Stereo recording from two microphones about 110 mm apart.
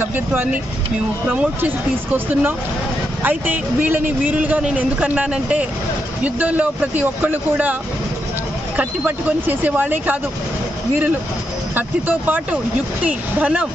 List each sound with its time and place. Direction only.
0.0 s speech: 20° right (ahead or behind)
8.7 s speech: 15° right (ahead or behind)
11.7 s speech: 15° right (ahead or behind)